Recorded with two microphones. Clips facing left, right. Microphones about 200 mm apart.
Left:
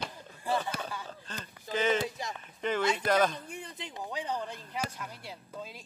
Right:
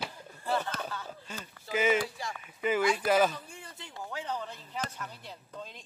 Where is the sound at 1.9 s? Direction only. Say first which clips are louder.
Even; 20° left (ahead or behind).